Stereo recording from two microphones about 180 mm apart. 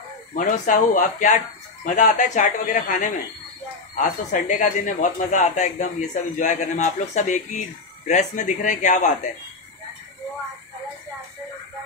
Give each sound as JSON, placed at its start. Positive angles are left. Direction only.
{"t": 0.3, "sound": "speech", "side_deg": 50}